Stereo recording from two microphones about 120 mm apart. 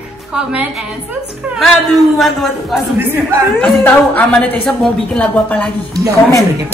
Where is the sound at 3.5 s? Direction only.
15° left (ahead or behind).